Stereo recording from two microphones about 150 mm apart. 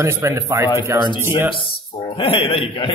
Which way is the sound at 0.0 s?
20° right (ahead or behind).